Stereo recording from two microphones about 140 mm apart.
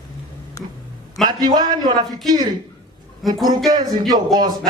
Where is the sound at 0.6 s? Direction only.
20° left (ahead or behind).